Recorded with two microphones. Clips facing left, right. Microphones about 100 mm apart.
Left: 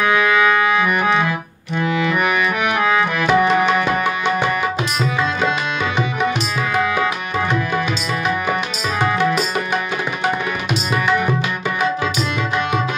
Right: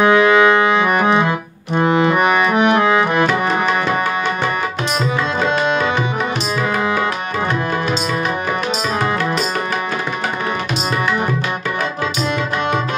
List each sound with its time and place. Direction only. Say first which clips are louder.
0.0 s organ: right 5 dB; 25° right (ahead or behind)
1.8 s music: right 5 dB; 35° right (ahead or behind)